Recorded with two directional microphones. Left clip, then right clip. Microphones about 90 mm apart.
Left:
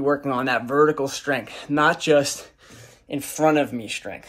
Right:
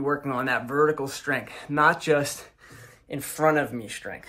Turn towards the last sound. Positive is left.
turn(degrees=10)  # may be behind; listen again after turning